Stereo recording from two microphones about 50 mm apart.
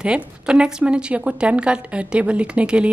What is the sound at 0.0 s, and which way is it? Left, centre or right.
A woman's voice, centre.